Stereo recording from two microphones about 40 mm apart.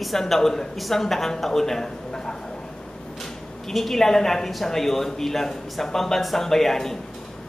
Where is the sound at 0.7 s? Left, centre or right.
Centre.